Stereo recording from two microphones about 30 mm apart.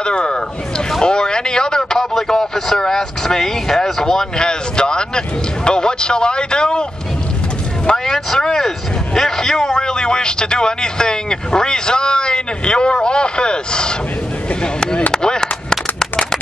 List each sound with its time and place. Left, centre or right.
0.0 s speech: left
1.0 s a sound: left
2.1 s vehicle: centre
5.7 s speech: left
7.9 s speech: centre
15.7 s a sound: centre